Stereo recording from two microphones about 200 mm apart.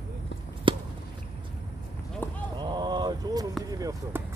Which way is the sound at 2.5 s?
20° right (ahead or behind).